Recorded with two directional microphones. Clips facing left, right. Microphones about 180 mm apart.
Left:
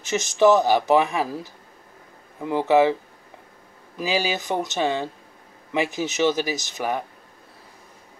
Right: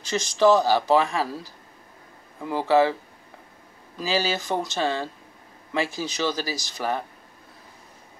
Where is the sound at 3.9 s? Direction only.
15° left (ahead or behind).